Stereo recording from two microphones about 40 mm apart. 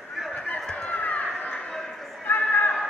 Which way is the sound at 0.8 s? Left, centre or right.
Left.